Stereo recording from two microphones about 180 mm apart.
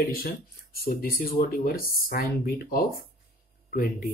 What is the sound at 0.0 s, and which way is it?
Speech, 55° left (ahead or behind).